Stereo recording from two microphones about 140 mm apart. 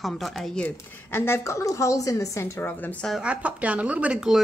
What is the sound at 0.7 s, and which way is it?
A woman's voice, 15° left (ahead or behind).